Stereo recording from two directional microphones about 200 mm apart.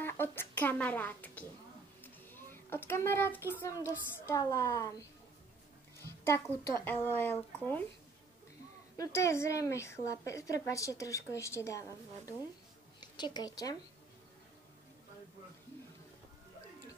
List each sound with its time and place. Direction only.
0.0 s speech: 10° left (ahead or behind)
2.2 s a sound: 10° left (ahead or behind)
3.6 s a woman's voice: 15° left (ahead or behind)
6.2 s a woman's voice: 15° left (ahead or behind)
8.9 s a woman's voice: 15° left (ahead or behind)
13.0 s a woman's voice: 20° left (ahead or behind)